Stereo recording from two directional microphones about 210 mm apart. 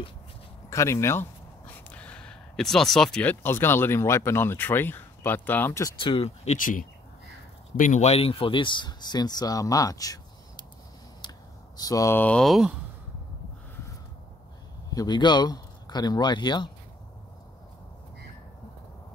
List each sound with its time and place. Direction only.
0.7 s speech: 15° left (ahead or behind)
11.1 s a sound: 20° left (ahead or behind); by 12.7 s centre (ahead or behind)
14.9 s speech: 20° left (ahead or behind)